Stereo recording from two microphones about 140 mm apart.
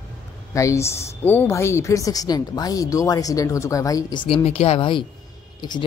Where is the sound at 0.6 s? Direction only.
20° left (ahead or behind).